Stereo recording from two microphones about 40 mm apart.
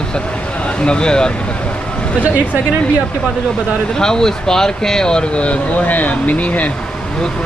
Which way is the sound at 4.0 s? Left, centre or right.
Centre.